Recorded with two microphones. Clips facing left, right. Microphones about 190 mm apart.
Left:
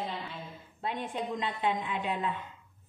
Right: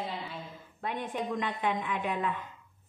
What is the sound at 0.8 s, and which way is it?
A woman's voice, 25° left (ahead or behind).